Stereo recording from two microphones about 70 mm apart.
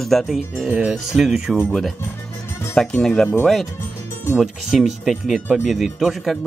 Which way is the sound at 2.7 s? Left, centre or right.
Centre.